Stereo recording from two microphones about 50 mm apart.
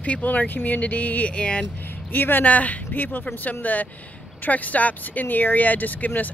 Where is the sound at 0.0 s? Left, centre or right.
Left.